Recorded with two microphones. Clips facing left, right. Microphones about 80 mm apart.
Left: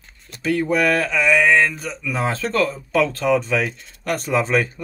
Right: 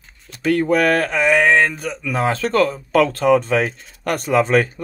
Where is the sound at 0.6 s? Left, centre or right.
Centre.